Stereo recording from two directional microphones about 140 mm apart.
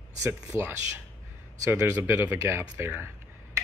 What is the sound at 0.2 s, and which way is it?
Speech, 20° right (ahead or behind).